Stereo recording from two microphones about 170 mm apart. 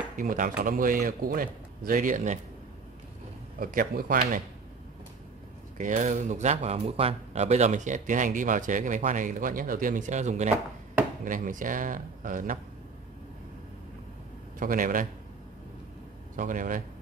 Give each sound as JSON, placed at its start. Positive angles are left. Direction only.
{"t": 0.1, "sound": "speech", "side_deg": -50}
{"t": 3.5, "sound": "a man's voice", "side_deg": -55}
{"t": 5.8, "sound": "speech", "side_deg": -50}
{"t": 14.6, "sound": "speech", "side_deg": -55}
{"t": 16.3, "sound": "speech", "side_deg": -50}